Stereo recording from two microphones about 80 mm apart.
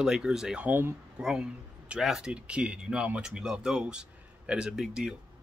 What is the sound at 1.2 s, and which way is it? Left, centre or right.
Speech, centre.